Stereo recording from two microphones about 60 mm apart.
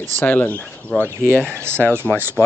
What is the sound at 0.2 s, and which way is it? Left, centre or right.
Speech, left.